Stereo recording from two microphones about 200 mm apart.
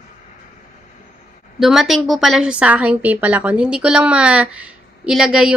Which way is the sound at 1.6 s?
Centre (ahead or behind).